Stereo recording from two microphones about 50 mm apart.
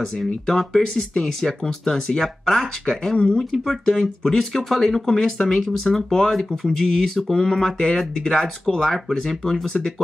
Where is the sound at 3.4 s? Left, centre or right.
Centre.